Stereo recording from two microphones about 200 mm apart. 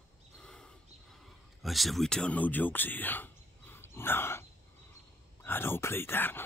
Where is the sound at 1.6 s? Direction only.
Centre (ahead or behind).